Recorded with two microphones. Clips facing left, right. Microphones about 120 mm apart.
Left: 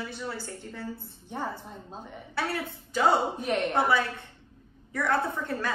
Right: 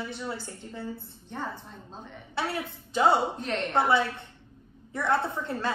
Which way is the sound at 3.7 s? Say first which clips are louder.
Right 6 dB; 25° right (ahead or behind).